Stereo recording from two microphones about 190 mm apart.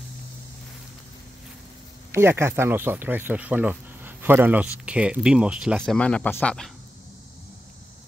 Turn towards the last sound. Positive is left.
turn(degrees=5)  # may be behind; listen again after turning